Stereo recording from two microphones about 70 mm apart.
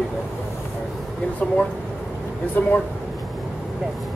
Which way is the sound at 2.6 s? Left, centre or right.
Left.